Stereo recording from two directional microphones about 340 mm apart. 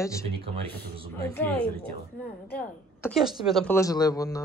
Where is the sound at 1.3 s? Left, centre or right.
Centre.